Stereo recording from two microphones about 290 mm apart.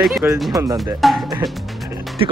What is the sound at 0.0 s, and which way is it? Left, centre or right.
Speech, centre.